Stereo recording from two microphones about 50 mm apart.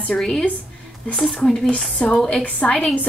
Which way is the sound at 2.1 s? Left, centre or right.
Centre.